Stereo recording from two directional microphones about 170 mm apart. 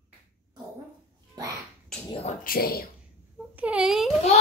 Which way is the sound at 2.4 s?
60° left (ahead or behind).